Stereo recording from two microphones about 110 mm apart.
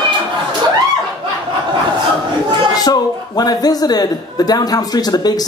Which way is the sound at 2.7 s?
35° left (ahead or behind).